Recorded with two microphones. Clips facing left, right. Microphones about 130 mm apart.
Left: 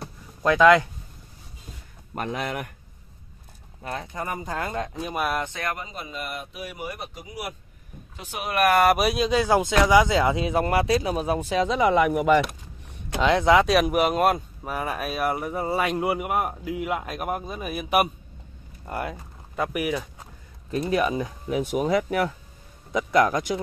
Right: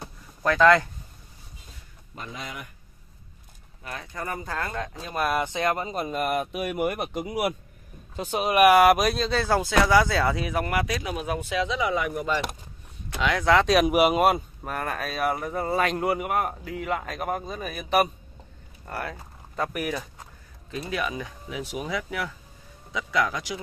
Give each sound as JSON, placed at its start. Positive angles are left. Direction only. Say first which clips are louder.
{"t": 0.4, "sound": "speech", "louder": "left 2 dB", "side_deg": 15}
{"t": 2.1, "sound": "speech", "louder": "left 9 dB", "side_deg": 60}
{"t": 3.8, "sound": "speech", "louder": "left 3 dB", "side_deg": 30}
{"t": 5.1, "sound": "speech", "louder": "right 1 dB", "side_deg": 5}
{"t": 5.4, "sound": "speech", "louder": "right 5 dB", "side_deg": -20}
{"t": 5.9, "sound": "speech", "louder": "right 8 dB", "side_deg": -45}
{"t": 8.2, "sound": "speech", "louder": "right 6 dB", "side_deg": -25}
{"t": 8.5, "sound": "speech", "louder": "right 3 dB", "side_deg": -10}
{"t": 8.9, "sound": "speech", "louder": "left 2 dB", "side_deg": 10}
{"t": 11.8, "sound": "speech", "louder": "left 7 dB", "side_deg": 65}
{"t": 13.2, "sound": "speech", "louder": "left 5 dB", "side_deg": 25}
{"t": 13.7, "sound": "speech", "louder": "right 1 dB", "side_deg": 0}
{"t": 20.9, "sound": "speech", "louder": "left 6 dB", "side_deg": 35}
{"t": 21.5, "sound": "speech", "louder": "left 9 dB", "side_deg": 50}